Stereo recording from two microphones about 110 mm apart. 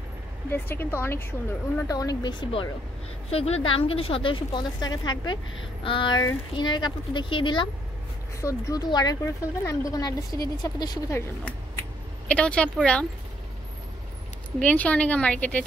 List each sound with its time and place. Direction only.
0.5 s speech: 20° left (ahead or behind)
1.9 s a woman's voice: 35° left (ahead or behind)
3.3 s a woman's voice: 70° left (ahead or behind); by 7.7 s 45° left (ahead or behind)
8.4 s a woman's voice: 30° left (ahead or behind)
12.3 s speech: 10° left (ahead or behind)
14.6 s speech: 10° left (ahead or behind)